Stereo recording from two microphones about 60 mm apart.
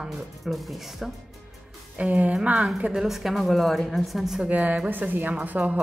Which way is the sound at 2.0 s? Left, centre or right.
Right.